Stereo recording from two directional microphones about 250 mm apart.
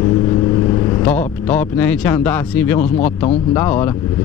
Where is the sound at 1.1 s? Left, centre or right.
Centre.